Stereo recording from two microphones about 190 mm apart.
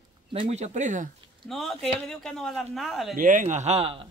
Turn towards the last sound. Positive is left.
turn(degrees=-30)  # may be behind; listen again after turning